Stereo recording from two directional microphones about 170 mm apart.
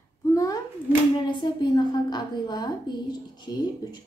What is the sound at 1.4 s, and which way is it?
A woman's voice, 25° left (ahead or behind).